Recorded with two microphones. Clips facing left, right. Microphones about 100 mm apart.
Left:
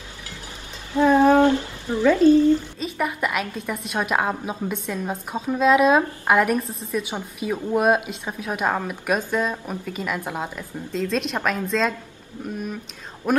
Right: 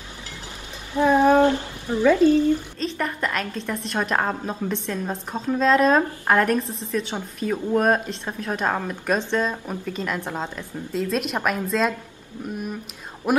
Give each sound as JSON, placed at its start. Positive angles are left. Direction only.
{"t": 0.9, "sound": "a sound", "side_deg": -15}
{"t": 1.9, "sound": "speech", "side_deg": -20}
{"t": 2.8, "sound": "a woman's voice", "side_deg": 10}
{"t": 10.9, "sound": "a woman's voice", "side_deg": -5}
{"t": 13.2, "sound": "speech", "side_deg": -10}